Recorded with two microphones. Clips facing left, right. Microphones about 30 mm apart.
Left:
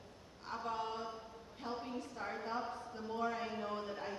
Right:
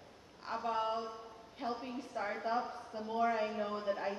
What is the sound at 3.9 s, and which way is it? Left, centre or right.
Speech, right.